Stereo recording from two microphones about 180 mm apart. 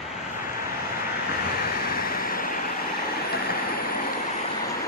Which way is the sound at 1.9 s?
55° left (ahead or behind).